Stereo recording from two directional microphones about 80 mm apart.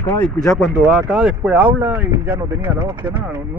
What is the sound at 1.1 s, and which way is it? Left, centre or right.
Speech, centre.